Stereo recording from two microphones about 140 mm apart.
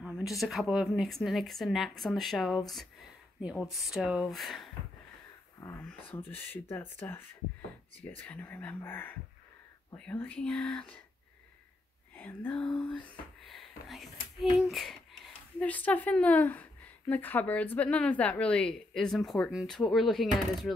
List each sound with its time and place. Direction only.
0.0 s speech: centre (ahead or behind)
5.8 s speech: 10° left (ahead or behind)
8.2 s speech: 10° left (ahead or behind)
12.2 s speech: 10° left (ahead or behind)